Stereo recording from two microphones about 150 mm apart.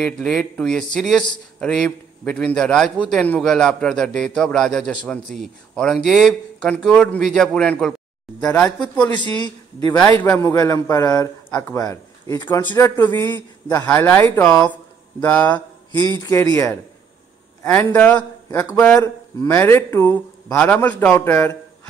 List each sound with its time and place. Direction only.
0.0 s a man's voice: 5° left (ahead or behind)
9.4 s a man's voice: 30° left (ahead or behind)
17.9 s a man's voice: 10° left (ahead or behind)